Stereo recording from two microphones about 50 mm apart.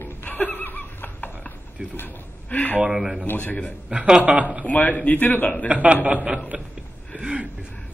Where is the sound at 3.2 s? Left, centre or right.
Left.